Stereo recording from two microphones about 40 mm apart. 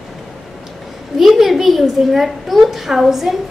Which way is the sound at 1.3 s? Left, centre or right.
Centre.